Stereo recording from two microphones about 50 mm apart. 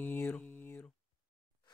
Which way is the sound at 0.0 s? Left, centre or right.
Left.